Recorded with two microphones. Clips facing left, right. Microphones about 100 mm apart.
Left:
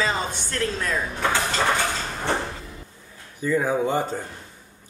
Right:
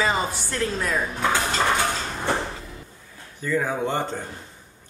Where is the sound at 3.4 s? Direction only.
10° left (ahead or behind).